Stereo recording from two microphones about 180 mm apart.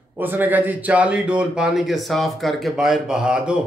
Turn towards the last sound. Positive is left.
turn(degrees=-5)  # may be behind; listen again after turning